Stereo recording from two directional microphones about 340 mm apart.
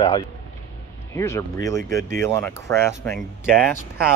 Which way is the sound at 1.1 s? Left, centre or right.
Centre.